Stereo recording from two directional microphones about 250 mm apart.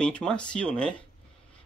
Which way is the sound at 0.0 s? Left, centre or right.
Centre.